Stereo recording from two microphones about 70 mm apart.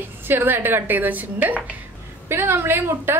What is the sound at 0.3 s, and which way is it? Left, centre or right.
Speech, right.